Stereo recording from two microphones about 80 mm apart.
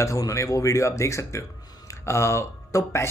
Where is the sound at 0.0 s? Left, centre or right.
Left.